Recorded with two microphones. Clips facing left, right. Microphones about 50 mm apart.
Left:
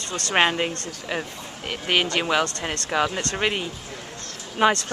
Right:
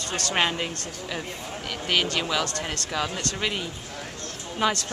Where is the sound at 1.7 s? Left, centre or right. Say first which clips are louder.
Left 3 dB; left.